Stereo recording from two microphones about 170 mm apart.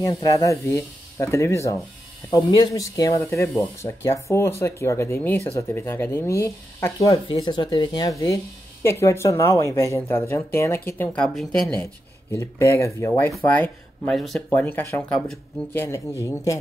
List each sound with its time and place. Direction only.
0.0 s speech: 20° left (ahead or behind)
7.2 s speech: 30° left (ahead or behind); by 14.4 s centre (ahead or behind)
14.5 s speech: 10° left (ahead or behind)
15.8 s speech: 15° left (ahead or behind)